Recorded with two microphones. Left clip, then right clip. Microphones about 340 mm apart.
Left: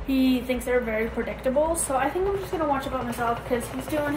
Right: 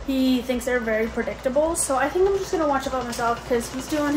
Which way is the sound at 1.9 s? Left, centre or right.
Centre.